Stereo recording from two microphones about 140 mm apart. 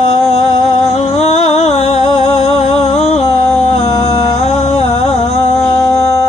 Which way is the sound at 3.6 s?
50° left (ahead or behind).